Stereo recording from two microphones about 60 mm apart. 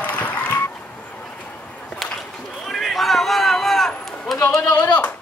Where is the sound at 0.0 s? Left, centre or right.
Left.